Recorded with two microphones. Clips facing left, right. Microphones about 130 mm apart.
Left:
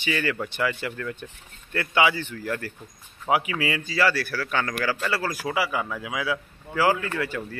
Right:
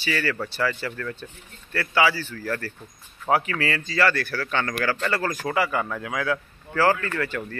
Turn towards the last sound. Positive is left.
turn(degrees=10)  # may be behind; listen again after turning